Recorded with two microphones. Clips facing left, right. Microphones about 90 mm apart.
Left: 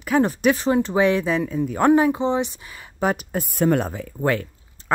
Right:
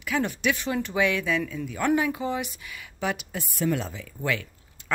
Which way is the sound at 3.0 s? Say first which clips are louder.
Left 7 dB; 45° left (ahead or behind).